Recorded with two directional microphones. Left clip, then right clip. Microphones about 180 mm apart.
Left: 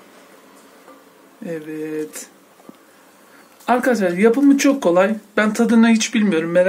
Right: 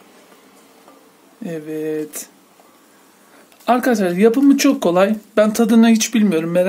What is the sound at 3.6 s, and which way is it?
Speech, 65° right (ahead or behind).